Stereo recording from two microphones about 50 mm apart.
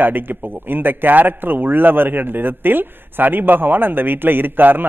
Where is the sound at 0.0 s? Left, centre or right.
Right.